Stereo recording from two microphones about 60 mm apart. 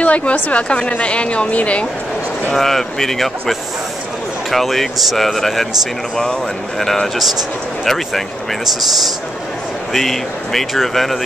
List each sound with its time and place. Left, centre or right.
0.0 s a woman's voice: left
2.5 s speech: centre
6.8 s speech: centre
9.9 s speech: centre